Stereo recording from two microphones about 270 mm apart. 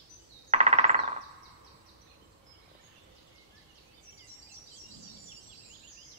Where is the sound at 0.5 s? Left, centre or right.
Right.